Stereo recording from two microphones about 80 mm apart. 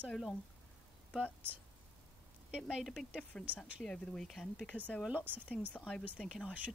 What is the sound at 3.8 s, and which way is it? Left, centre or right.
Speech, centre.